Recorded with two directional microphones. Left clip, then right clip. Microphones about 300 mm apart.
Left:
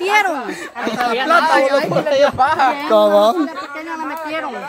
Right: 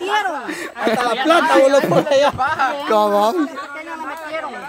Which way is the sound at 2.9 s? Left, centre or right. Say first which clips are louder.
Left 3 dB; centre.